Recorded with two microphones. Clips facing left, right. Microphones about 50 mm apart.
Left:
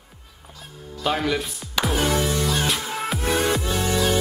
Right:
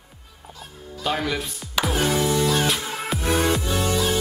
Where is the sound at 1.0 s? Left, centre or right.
Centre.